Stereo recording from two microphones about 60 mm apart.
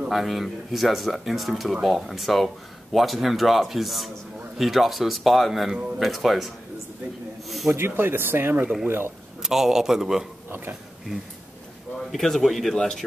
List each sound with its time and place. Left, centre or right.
0.1 s speech: centre
7.7 s speech: right
9.4 s a man's voice: centre
12.1 s speech: centre